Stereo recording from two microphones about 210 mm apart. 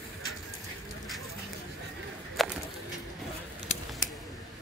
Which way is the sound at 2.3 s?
Centre (ahead or behind).